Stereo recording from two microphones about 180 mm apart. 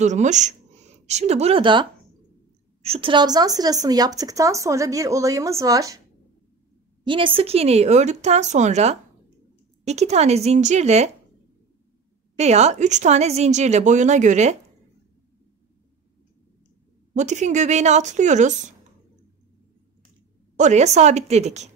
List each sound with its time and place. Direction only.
0.0 s speech: 40° right (ahead or behind); by 5.9 s 20° right (ahead or behind)
7.1 s speech: 30° right (ahead or behind)
12.4 s speech: 40° right (ahead or behind)
17.1 s speech: 40° right (ahead or behind)
20.5 s speech: 40° right (ahead or behind)